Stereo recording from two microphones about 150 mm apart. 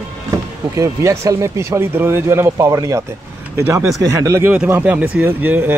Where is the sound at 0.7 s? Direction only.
20° right (ahead or behind).